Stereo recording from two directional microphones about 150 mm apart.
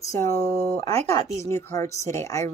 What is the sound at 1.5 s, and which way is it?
Speech, 20° left (ahead or behind).